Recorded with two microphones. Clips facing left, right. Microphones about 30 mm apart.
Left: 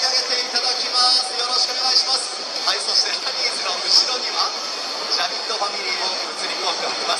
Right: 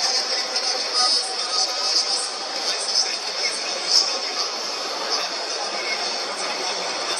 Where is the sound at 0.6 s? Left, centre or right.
Left.